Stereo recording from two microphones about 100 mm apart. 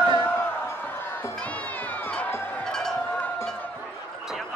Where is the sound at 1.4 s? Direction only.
15° left (ahead or behind).